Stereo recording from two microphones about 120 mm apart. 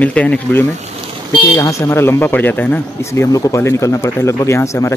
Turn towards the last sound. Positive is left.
turn(degrees=25)  # may be behind; listen again after turning